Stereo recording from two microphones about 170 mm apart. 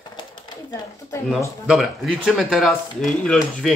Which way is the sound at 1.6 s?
Centre (ahead or behind).